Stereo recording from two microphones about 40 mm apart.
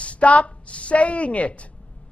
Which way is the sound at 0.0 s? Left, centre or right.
Left.